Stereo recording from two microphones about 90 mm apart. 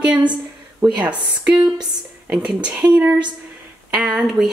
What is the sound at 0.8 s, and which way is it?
Speech, 15° right (ahead or behind).